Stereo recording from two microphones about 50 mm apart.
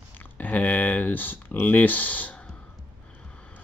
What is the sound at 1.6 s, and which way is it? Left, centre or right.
Speech, left.